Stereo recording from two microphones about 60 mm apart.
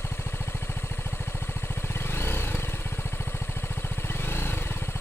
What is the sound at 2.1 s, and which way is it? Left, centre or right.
Vehicle, left.